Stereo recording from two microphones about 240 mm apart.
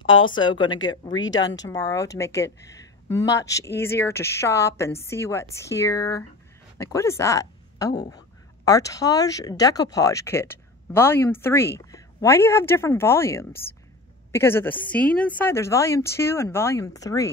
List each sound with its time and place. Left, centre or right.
0.0 s a woman's voice: centre